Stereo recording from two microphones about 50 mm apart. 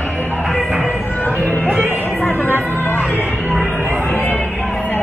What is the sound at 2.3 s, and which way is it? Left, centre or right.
Music, right.